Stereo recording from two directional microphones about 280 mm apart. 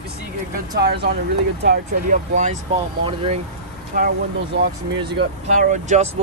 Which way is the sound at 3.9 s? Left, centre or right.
Right.